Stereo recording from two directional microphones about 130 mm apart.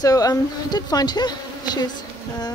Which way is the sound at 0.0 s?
30° left (ahead or behind).